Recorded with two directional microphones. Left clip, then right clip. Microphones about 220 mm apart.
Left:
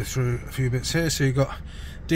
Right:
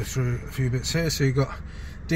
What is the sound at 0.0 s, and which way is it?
Speech, 25° left (ahead or behind).